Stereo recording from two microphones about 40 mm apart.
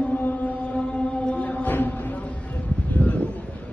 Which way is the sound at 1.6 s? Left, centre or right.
Left.